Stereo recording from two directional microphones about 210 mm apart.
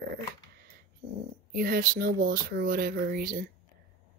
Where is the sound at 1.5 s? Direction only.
45° right (ahead or behind).